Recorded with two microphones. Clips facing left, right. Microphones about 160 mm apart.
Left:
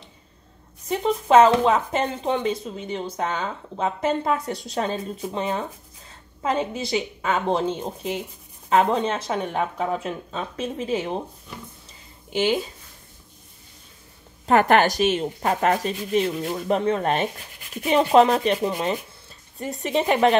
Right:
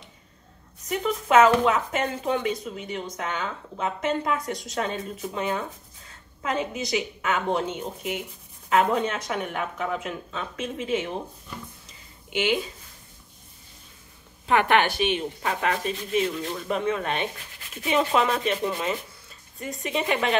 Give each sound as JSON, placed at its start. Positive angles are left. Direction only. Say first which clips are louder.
{"t": 0.8, "sound": "speech", "louder": "left 4 dB", "side_deg": 30}
{"t": 12.3, "sound": "speech", "louder": "left 3 dB", "side_deg": 35}
{"t": 14.4, "sound": "speech", "louder": "left 4 dB", "side_deg": 40}